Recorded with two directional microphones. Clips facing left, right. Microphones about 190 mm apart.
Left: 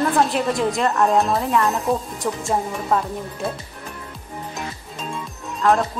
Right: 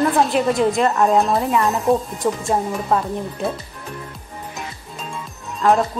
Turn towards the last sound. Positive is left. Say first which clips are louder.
# right 2 dB
turn(degrees=0)  # may be behind; listen again after turning